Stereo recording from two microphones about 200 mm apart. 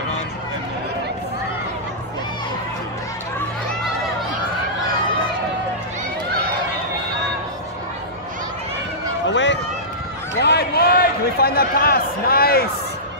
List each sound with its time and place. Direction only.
9.3 s run: 65° left (ahead or behind)
10.4 s a sound: 55° left (ahead or behind)
11.3 s a man's voice: 50° left (ahead or behind)